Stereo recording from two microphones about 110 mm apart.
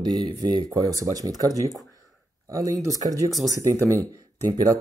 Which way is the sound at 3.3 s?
Centre (ahead or behind).